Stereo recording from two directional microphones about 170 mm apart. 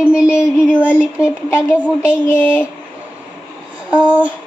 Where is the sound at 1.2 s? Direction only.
15° left (ahead or behind).